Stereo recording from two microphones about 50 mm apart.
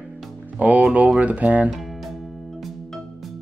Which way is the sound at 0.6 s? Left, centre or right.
Right.